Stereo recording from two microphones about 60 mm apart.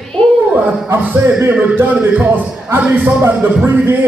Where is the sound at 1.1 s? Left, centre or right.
Right.